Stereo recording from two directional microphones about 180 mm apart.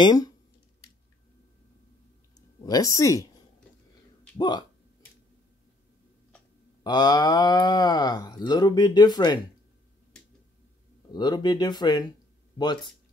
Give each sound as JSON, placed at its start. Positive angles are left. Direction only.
{"t": 0.0, "sound": "speech", "side_deg": 20}
{"t": 2.3, "sound": "a sound", "side_deg": 20}
{"t": 4.4, "sound": "speech", "side_deg": 25}
{"t": 6.8, "sound": "speech", "side_deg": 20}
{"t": 11.1, "sound": "speech", "side_deg": 25}